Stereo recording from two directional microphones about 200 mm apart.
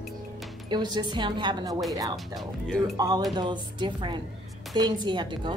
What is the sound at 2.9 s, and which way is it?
A woman's voice, 20° right (ahead or behind).